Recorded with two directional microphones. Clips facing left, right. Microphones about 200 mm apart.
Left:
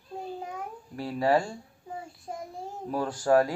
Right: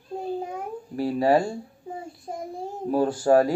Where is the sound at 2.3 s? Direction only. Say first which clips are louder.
Right 4 dB; 35° right (ahead or behind).